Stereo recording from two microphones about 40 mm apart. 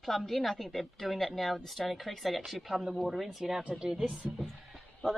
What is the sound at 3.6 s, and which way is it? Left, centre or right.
Speech, right.